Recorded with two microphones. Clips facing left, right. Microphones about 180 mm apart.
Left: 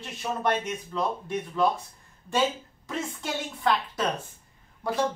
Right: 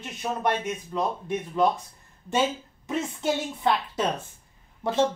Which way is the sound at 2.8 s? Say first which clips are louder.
Right 6 dB; 20° right (ahead or behind).